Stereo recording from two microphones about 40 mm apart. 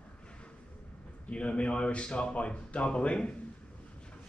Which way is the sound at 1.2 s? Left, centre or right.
Left.